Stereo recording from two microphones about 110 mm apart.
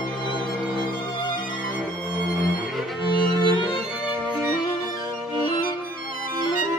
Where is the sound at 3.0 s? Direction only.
45° left (ahead or behind).